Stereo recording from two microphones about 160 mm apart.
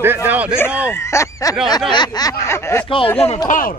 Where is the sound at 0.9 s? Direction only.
15° left (ahead or behind).